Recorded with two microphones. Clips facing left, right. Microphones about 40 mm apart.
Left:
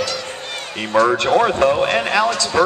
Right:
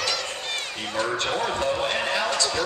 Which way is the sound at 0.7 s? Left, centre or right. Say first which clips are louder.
Left 13 dB; left.